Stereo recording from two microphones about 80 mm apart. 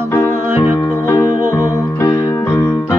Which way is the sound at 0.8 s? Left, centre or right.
Left.